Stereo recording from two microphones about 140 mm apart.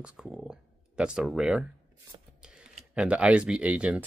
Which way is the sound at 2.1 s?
35° right (ahead or behind).